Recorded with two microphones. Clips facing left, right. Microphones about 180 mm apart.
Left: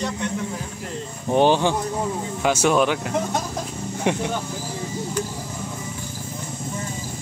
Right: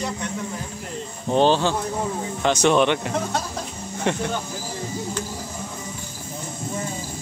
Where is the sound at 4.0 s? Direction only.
10° left (ahead or behind).